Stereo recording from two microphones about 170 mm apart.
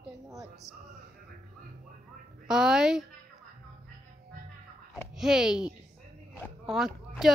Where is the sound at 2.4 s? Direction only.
5° right (ahead or behind).